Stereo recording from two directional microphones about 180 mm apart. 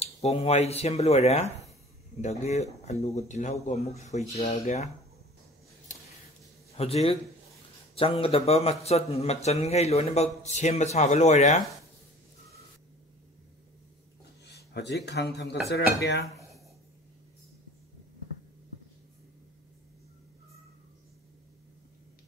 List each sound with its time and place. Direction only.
0.0 s a man's voice: 35° left (ahead or behind)
6.8 s a man's voice: 35° left (ahead or behind)
14.4 s speech: 65° left (ahead or behind)